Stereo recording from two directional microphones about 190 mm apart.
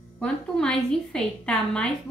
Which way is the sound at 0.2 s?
5° left (ahead or behind).